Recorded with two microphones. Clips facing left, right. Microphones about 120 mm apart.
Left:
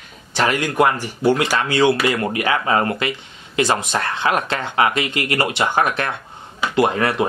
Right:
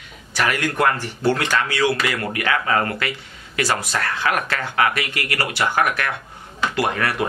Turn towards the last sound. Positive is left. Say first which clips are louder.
# left 5 dB
turn(degrees=20)  # may be behind; listen again after turning